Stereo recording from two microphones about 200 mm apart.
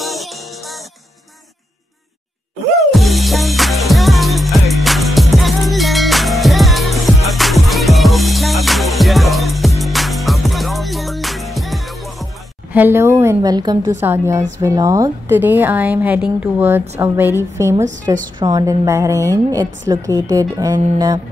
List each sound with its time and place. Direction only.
0.0 s music: centre (ahead or behind)
2.9 s music: centre (ahead or behind)
12.7 s a woman's voice: 10° right (ahead or behind)